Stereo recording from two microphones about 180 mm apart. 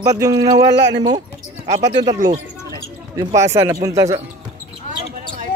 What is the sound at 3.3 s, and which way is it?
Speech, 15° right (ahead or behind).